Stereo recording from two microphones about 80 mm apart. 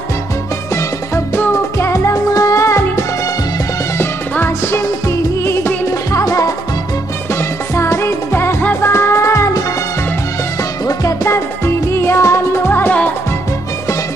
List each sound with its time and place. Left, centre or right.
0.7 s music: left
7.2 s music: left
10.9 s music: left